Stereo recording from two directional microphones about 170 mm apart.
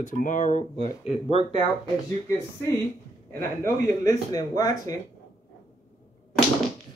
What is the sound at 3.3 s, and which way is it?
Speech, 15° left (ahead or behind).